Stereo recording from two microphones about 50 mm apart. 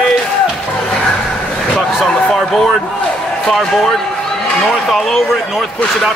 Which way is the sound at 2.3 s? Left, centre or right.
Centre.